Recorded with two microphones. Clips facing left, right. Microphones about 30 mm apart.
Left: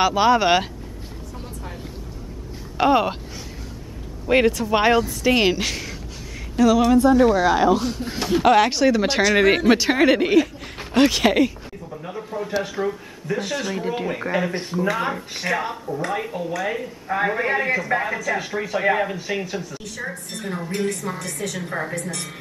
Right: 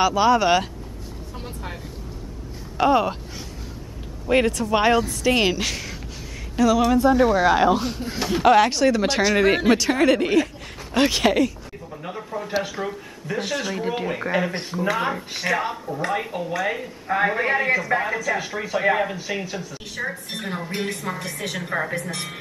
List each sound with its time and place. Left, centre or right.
0.0 s speech: centre
2.8 s speech: centre
4.3 s speech: centre
8.0 s speech: centre
11.0 s speech: centre
12.0 s speech: centre
20.0 s a woman's voice: centre